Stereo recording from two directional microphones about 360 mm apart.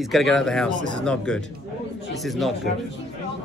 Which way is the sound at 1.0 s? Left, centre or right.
Centre.